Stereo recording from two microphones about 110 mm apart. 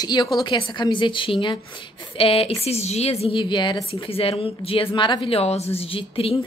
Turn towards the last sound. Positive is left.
turn(degrees=60)  # may be behind; listen again after turning